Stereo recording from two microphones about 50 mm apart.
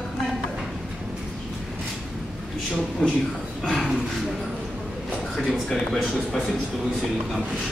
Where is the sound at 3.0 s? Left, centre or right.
Left.